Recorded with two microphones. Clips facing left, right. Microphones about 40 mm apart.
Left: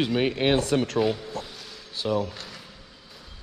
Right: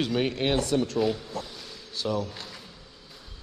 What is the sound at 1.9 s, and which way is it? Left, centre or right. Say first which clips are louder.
Speech: left 3 dB; left.